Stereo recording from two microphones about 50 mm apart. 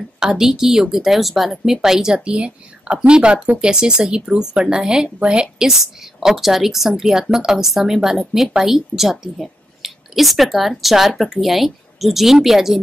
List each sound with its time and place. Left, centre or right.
0.2 s a woman's voice: centre
5.7 s a woman's voice: centre